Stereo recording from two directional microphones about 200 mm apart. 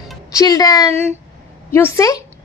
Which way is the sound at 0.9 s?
35° right (ahead or behind).